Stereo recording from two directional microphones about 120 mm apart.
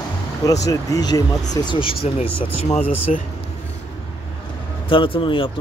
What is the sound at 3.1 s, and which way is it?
Speech, 80° left.